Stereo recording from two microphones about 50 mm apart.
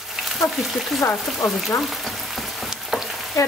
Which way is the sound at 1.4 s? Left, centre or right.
Centre.